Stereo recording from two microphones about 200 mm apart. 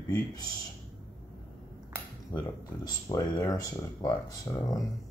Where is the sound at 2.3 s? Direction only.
20° left (ahead or behind).